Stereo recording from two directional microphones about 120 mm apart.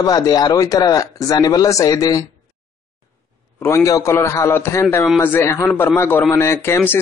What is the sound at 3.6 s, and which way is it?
A man's voice, 25° left (ahead or behind).